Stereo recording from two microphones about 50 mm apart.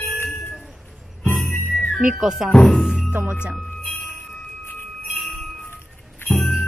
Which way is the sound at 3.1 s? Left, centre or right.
Right.